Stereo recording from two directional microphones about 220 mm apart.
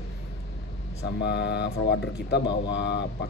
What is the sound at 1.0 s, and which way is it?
Speech, 50° left (ahead or behind).